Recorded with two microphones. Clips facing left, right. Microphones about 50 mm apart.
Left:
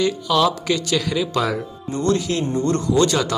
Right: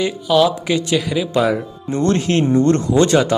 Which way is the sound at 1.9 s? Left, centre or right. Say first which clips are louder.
Right 3 dB; right.